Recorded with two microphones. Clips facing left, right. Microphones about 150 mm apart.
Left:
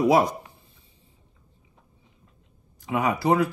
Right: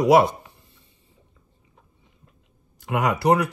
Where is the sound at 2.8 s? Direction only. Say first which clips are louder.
Right 2 dB; 90° right; by 3.4 s 75° right (ahead or behind).